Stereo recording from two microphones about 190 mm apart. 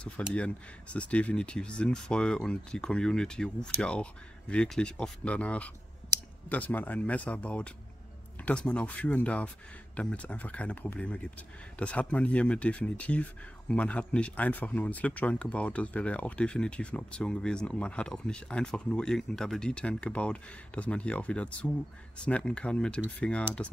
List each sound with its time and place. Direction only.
0.0 s speech: 5° left (ahead or behind)